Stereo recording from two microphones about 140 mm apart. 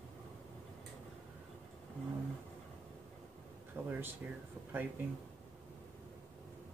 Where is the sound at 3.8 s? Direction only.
15° right (ahead or behind).